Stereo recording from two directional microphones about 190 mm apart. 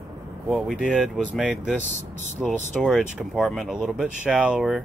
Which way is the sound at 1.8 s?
40° right (ahead or behind).